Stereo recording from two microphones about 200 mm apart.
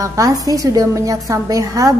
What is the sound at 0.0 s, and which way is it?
A woman's voice, 15° right (ahead or behind).